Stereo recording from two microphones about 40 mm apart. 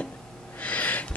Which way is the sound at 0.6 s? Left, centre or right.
Left.